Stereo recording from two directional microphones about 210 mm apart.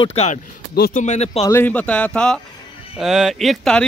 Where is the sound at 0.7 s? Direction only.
40° left (ahead or behind).